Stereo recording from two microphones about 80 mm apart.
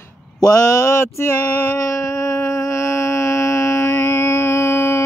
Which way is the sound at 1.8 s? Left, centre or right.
Left.